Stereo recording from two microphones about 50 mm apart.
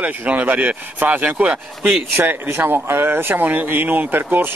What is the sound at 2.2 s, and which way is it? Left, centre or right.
Speech, right.